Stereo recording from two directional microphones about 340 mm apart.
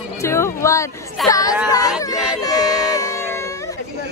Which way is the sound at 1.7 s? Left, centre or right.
Centre.